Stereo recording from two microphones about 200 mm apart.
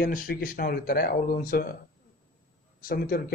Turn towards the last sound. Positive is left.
turn(degrees=45)  # may be behind; listen again after turning